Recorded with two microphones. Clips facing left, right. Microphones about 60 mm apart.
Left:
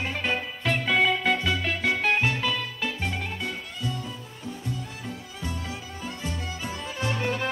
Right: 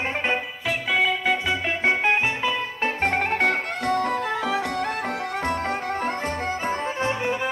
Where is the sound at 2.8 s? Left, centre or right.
Right.